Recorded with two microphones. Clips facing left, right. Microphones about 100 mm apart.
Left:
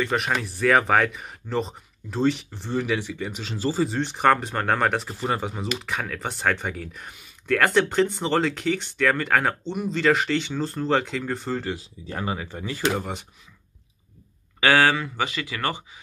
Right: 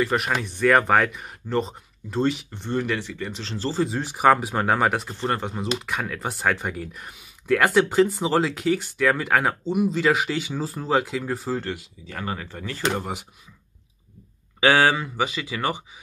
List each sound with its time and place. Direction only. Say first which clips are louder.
0.0 s speech: right 1 dB; centre (ahead or behind)
11.7 s speech: left 2 dB; 30° left (ahead or behind)
12.3 s speech: even; 15° left (ahead or behind)
12.8 s speech: even; centre (ahead or behind)
14.6 s speech: right 1 dB; 20° right (ahead or behind)